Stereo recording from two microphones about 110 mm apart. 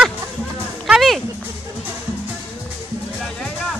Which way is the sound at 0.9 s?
Centre (ahead or behind).